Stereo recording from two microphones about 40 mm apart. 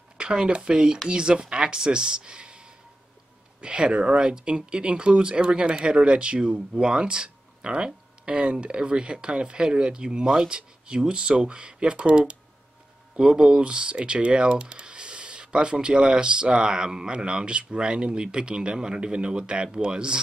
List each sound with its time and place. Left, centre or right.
0.2 s speech: right